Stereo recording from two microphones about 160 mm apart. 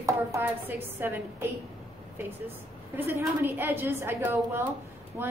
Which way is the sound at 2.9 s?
15° right (ahead or behind).